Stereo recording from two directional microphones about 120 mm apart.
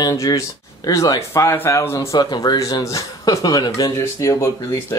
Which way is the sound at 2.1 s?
35° left (ahead or behind).